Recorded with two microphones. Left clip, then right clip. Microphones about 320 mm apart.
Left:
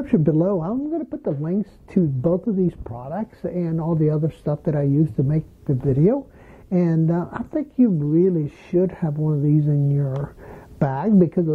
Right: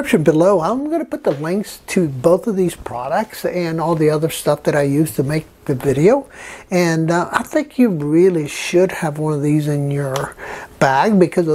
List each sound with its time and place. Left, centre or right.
0.0 s speech: centre